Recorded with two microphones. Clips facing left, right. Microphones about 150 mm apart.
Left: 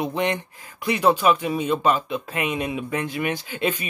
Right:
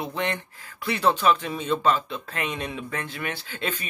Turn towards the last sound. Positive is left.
turn(degrees=15)  # may be behind; listen again after turning